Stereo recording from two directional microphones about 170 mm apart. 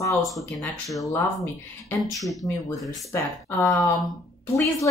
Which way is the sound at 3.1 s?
15° left (ahead or behind).